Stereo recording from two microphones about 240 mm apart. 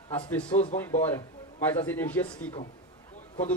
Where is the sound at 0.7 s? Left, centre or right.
Centre.